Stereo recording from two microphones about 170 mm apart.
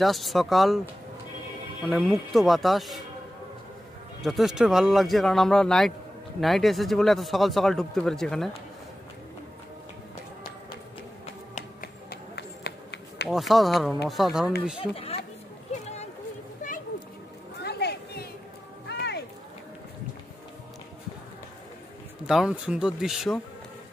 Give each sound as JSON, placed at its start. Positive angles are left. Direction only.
{"t": 0.0, "sound": "speech", "side_deg": 0}
{"t": 1.9, "sound": "speech", "side_deg": 0}
{"t": 4.2, "sound": "speech", "side_deg": 0}
{"t": 11.5, "sound": "tap", "side_deg": 55}
{"t": 12.4, "sound": "run", "side_deg": 85}
{"t": 13.3, "sound": "speech", "side_deg": 0}
{"t": 14.8, "sound": "speech", "side_deg": 35}
{"t": 15.7, "sound": "a sound", "side_deg": 40}
{"t": 17.6, "sound": "a sound", "side_deg": 75}
{"t": 22.2, "sound": "speech", "side_deg": -5}